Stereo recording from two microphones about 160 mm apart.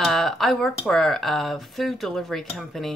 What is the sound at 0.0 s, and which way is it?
Speech, centre (ahead or behind).